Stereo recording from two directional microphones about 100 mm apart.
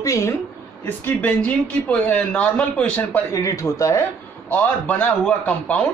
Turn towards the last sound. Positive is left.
turn(degrees=15)  # may be behind; listen again after turning